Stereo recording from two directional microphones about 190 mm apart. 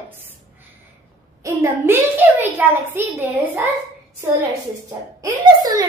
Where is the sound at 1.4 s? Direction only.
15° right (ahead or behind).